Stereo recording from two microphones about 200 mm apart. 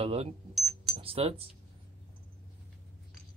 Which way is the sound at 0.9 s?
30° right (ahead or behind).